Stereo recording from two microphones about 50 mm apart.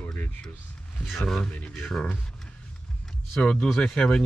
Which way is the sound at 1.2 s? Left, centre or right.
Centre.